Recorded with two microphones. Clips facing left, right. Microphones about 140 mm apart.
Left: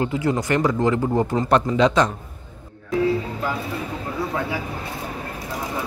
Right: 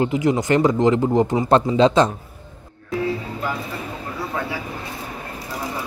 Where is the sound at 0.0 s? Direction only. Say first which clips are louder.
Right 3 dB; 20° right (ahead or behind).